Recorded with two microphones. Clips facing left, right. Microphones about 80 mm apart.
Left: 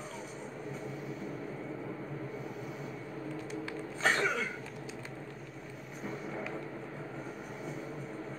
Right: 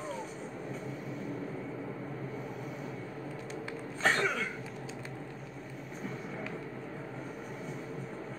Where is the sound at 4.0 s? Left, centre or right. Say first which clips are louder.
Right 1 dB; centre.